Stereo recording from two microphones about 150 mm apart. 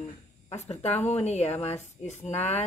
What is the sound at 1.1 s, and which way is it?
Speech, 45° left (ahead or behind).